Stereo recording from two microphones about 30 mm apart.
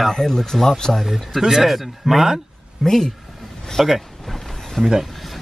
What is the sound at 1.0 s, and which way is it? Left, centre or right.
Speech, centre.